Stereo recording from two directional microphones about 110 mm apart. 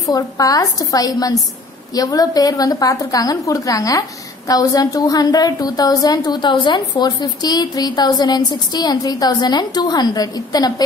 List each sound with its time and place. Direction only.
0.0 s a woman's voice: 35° left (ahead or behind)